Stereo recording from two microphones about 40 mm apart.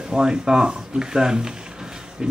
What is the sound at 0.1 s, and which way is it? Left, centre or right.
Speech, centre.